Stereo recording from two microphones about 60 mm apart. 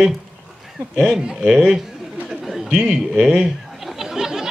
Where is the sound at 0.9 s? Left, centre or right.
Centre.